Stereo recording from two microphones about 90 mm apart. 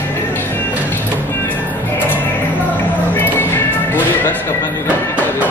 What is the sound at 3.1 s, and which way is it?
Music, 25° left (ahead or behind).